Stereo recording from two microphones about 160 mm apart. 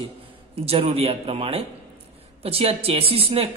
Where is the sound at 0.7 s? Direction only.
40° right (ahead or behind).